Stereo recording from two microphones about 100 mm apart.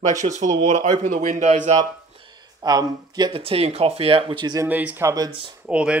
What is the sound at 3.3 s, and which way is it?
Speech, 70° right (ahead or behind).